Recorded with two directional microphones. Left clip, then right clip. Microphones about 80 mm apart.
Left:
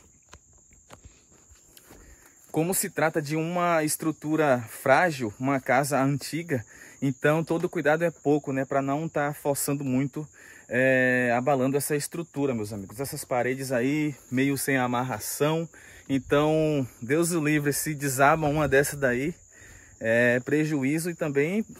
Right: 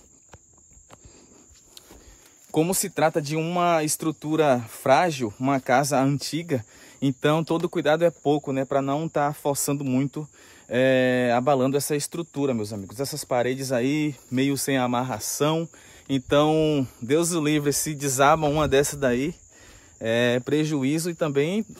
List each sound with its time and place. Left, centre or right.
2.5 s speech: right
12.6 s speech: right